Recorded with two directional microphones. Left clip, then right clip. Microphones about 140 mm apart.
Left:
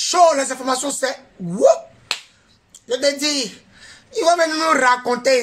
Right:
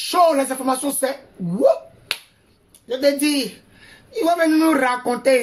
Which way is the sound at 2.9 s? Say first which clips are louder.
Even; 10° right (ahead or behind).